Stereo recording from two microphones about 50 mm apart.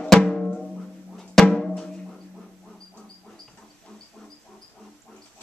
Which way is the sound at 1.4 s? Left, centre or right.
Centre.